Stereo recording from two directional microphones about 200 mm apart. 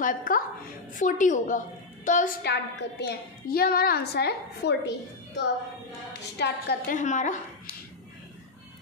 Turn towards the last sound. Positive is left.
turn(degrees=35)  # may be behind; listen again after turning